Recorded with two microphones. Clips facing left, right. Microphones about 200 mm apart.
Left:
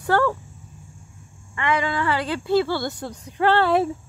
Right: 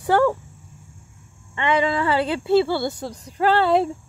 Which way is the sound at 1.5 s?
25° right (ahead or behind).